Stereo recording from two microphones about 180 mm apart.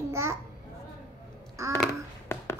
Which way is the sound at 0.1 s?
15° right (ahead or behind).